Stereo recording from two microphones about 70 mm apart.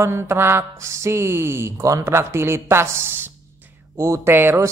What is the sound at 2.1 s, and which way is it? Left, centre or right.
Mantra, right.